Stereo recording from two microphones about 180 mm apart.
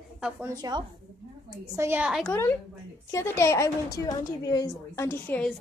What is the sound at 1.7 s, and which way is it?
Speech, 10° right (ahead or behind).